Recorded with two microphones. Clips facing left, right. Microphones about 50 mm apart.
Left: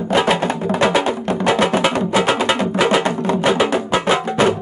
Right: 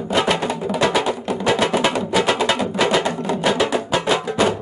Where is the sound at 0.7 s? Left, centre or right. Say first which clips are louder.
Left 2 dB; centre.